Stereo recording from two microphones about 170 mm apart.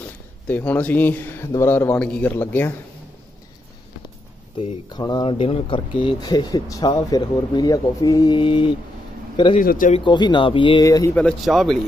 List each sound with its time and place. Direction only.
0.5 s speech: 10° left (ahead or behind)
4.6 s speech: 30° left (ahead or behind)
9.6 s speech: 50° left (ahead or behind)
9.9 s speech: 25° left (ahead or behind)
11.1 s a man's voice: centre (ahead or behind)